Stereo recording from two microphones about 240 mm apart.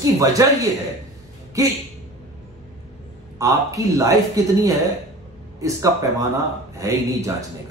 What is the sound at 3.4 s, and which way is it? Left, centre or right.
A man's voice, centre.